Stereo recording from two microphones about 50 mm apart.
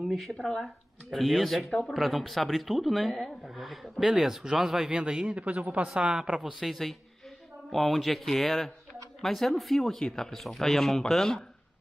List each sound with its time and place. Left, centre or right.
0.1 s a man's voice: centre; by 6.4 s right
6.4 s speech: centre